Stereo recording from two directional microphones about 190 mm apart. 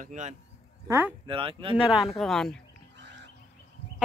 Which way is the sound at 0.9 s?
10° right (ahead or behind).